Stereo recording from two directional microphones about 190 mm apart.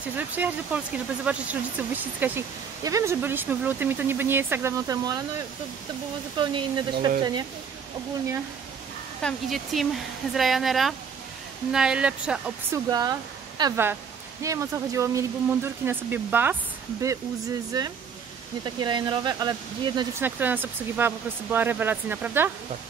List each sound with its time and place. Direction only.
0.1 s speech: 10° right (ahead or behind)
6.3 s speech: 25° right (ahead or behind)
9.2 s speech: centre (ahead or behind)
12.9 s speech: 20° right (ahead or behind)
17.7 s speech: 20° right (ahead or behind)
20.2 s speech: 10° right (ahead or behind)